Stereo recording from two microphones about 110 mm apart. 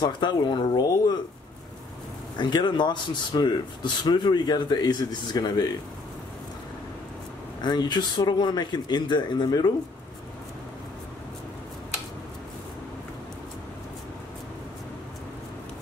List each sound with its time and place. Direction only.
0.0 s speech: 45° left (ahead or behind)
2.3 s speech: 45° left (ahead or behind)
7.6 s speech: 40° left (ahead or behind)